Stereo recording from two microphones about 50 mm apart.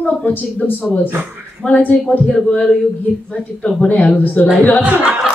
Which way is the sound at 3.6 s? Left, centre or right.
Left.